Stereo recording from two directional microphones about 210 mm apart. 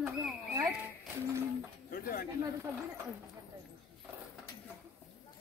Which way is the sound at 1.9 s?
45° left (ahead or behind).